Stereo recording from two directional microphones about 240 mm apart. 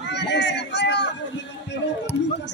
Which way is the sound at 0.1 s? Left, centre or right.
Left.